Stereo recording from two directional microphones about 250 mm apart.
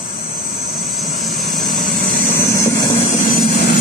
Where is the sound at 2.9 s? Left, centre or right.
Left.